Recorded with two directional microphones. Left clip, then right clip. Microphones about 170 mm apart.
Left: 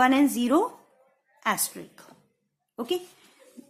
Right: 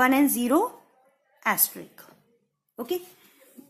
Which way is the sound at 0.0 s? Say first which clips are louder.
Even; centre (ahead or behind).